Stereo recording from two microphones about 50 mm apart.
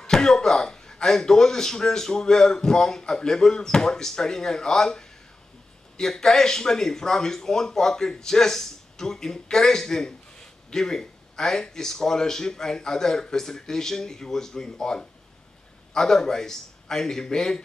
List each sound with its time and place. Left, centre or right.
0.1 s speech: centre